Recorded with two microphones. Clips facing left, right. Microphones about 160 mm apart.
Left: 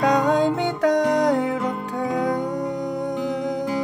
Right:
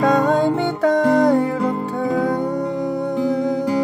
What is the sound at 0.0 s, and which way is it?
Music, 15° left (ahead or behind).